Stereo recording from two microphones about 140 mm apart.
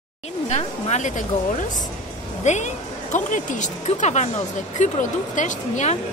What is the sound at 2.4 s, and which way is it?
Speech, 60° left (ahead or behind).